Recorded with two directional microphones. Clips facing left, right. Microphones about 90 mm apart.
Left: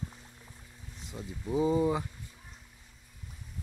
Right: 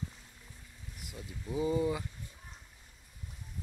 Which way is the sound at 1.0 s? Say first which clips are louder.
Left 5 dB; 25° left (ahead or behind).